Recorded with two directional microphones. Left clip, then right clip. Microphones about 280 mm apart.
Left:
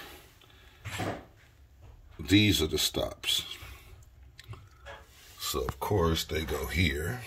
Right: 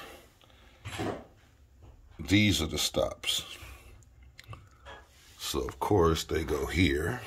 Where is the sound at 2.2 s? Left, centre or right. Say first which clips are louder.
Left 2 dB; centre.